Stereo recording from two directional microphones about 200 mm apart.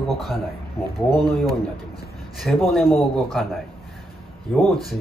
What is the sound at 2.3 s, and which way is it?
Speech, centre (ahead or behind).